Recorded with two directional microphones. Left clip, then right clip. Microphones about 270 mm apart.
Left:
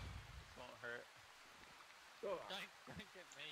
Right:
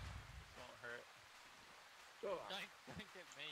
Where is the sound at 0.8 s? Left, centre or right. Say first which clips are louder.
Left 2 dB; centre.